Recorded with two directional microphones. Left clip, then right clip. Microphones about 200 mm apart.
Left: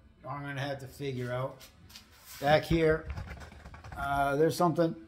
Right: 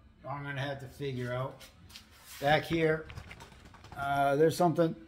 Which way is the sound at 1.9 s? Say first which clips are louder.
Even; 20° left (ahead or behind).